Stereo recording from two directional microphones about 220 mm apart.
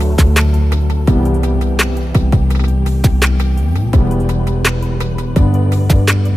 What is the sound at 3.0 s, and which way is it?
Music, centre (ahead or behind).